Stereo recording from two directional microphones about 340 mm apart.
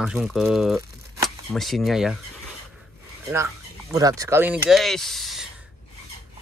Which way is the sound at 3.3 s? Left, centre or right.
Centre.